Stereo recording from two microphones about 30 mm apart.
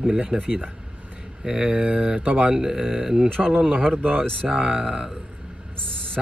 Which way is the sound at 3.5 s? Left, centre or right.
Right.